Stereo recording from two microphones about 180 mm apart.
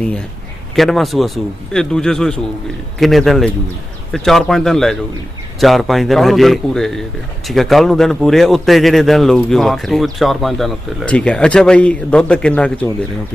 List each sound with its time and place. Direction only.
0.7 s a man's voice: centre (ahead or behind)